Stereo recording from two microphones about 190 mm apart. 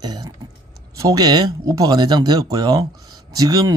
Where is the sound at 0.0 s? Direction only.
20° right (ahead or behind).